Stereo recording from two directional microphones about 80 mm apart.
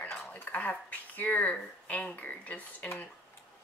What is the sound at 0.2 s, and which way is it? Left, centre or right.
Speech, centre.